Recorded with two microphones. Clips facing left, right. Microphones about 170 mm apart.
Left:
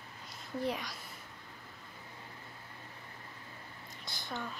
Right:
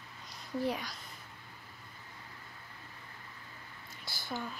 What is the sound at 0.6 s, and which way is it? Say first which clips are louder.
Speech: right 1 dB; centre (ahead or behind).